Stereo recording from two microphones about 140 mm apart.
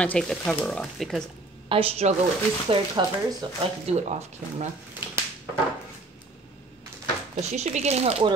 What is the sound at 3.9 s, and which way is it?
Speech, 50° right (ahead or behind).